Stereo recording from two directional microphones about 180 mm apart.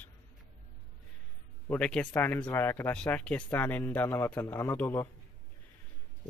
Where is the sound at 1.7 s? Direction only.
5° left (ahead or behind).